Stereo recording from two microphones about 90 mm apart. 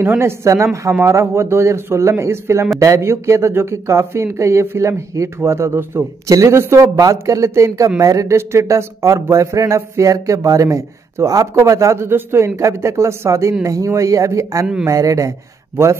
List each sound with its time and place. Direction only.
0.2 s speech: 30° right (ahead or behind)
6.2 s speech: 35° right (ahead or behind)